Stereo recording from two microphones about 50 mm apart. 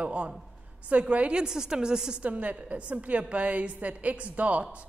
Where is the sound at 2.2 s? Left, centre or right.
Right.